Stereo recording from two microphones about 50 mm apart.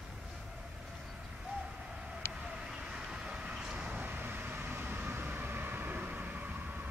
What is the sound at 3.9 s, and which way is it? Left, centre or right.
Vehicle, right.